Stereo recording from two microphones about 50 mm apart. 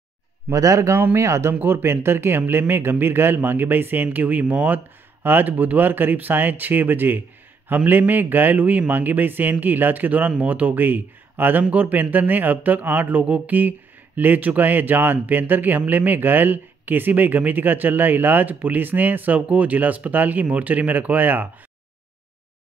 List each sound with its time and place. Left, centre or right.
0.5 s a man's voice: right
0.9 s speech: right
1.2 s speech: right
1.5 s speech: right